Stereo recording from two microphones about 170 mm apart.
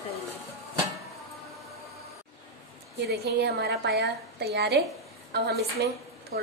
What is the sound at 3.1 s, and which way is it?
A woman's voice, 75° right (ahead or behind).